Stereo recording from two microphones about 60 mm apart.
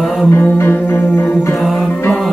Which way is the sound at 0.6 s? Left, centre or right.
Left.